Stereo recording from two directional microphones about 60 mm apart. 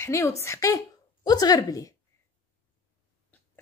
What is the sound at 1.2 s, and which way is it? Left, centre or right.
Speech, left.